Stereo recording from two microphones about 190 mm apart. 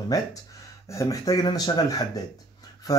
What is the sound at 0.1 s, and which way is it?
Speech, 20° left (ahead or behind).